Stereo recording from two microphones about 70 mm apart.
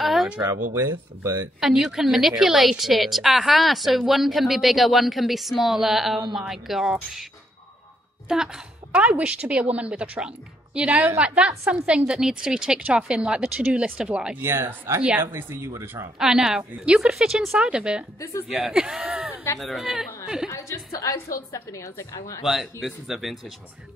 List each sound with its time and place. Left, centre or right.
0.0 s a sound: centre
0.5 s speech: right
1.6 s a woman's voice: centre
8.3 s a woman's voice: centre
14.4 s speech: right
15.0 s speech: centre
15.3 s speech: right
16.2 s a woman's voice: centre
20.4 s a woman's voice: left
22.4 s a woman's voice: centre